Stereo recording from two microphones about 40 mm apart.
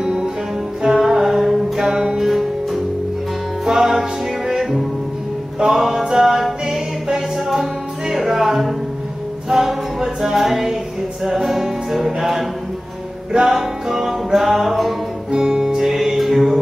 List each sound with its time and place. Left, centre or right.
0.0 s music: centre
15.3 s music: centre